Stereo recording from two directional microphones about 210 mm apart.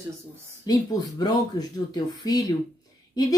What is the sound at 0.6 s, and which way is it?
Speech, 20° left (ahead or behind).